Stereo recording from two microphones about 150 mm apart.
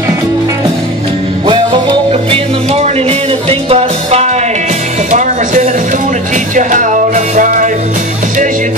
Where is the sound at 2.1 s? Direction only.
40° right (ahead or behind).